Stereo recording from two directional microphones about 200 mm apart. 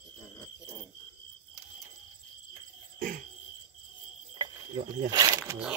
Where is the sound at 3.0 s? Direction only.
40° right (ahead or behind).